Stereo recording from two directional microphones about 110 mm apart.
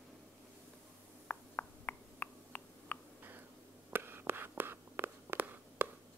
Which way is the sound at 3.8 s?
20° right (ahead or behind).